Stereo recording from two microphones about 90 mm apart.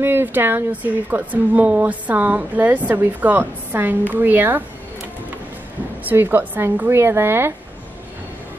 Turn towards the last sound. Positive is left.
turn(degrees=-25)  # may be behind; listen again after turning